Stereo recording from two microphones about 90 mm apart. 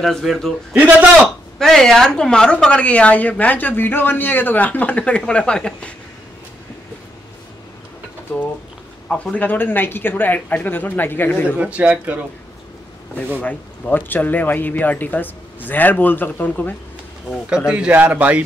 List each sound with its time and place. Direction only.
0.0 s a man's voice: centre (ahead or behind)
9.1 s speech: 15° left (ahead or behind)
11.5 s a man's voice: 15° right (ahead or behind)
13.4 s speech: 15° left (ahead or behind)
17.6 s a man's voice: 15° right (ahead or behind)